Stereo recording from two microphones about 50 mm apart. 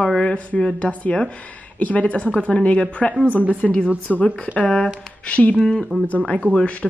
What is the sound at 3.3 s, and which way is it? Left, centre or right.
Speech, right.